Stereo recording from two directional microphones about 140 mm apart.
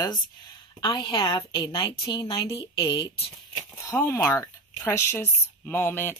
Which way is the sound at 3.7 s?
20° left (ahead or behind).